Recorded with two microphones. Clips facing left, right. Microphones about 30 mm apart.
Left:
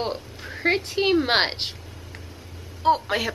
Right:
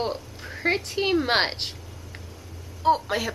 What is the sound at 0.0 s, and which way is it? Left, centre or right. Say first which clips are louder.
A woman's voice: even; centre.